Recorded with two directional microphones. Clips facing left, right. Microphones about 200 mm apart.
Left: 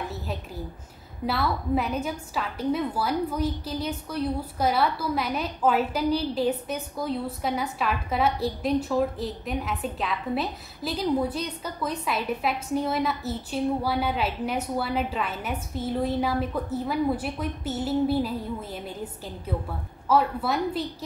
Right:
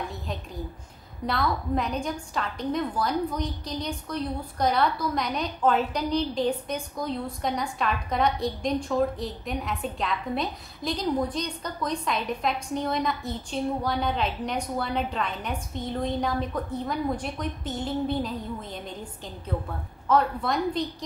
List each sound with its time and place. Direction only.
1.2 s a woman's voice: 5° left (ahead or behind)